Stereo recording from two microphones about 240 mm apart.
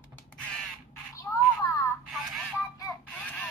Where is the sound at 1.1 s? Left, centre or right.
Centre.